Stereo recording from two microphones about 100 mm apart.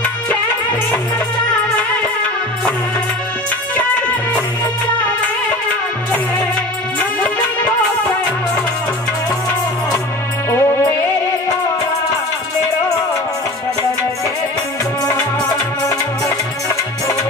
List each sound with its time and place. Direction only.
0.0 s music: 15° left (ahead or behind)
7.2 s music: 15° left (ahead or behind)
10.5 s music: 25° left (ahead or behind)
15.0 s music: 30° left (ahead or behind)